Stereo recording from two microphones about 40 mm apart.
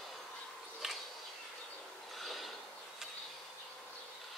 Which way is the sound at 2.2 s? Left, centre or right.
Centre.